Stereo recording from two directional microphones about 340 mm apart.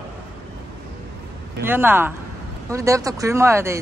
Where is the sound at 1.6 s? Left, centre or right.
Centre.